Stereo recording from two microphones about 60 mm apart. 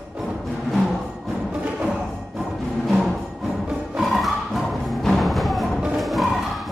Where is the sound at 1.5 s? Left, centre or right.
Centre.